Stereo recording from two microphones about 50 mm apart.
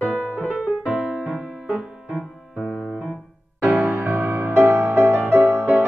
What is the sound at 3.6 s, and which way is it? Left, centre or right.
Music, right.